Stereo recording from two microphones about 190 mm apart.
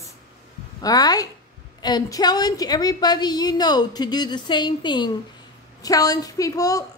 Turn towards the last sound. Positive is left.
turn(degrees=20)  # may be behind; listen again after turning